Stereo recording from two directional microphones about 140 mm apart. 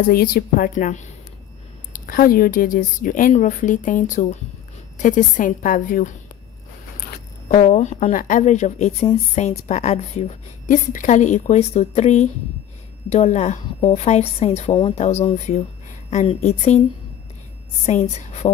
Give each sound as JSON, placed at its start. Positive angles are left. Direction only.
{"t": 0.1, "sound": "a woman's voice", "side_deg": 90}
{"t": 1.9, "sound": "a woman's voice", "side_deg": 80}
{"t": 7.4, "sound": "a woman's voice", "side_deg": 60}
{"t": 10.9, "sound": "a woman's voice", "side_deg": 65}
{"t": 17.8, "sound": "a woman's voice", "side_deg": 55}